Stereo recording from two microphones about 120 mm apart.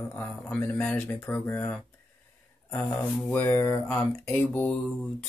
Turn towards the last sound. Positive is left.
turn(degrees=0)  # may be behind; listen again after turning